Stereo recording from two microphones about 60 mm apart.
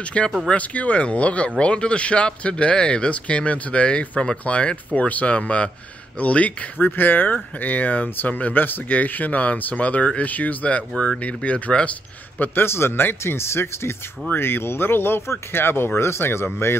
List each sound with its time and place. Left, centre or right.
0.0 s speech: centre
12.4 s speech: left